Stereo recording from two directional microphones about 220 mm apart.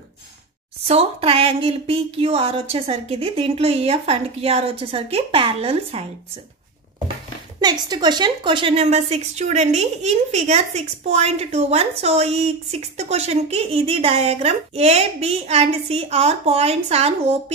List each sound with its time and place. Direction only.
0.8 s a woman's voice: 25° right (ahead or behind)
7.6 s a woman's voice: 20° right (ahead or behind)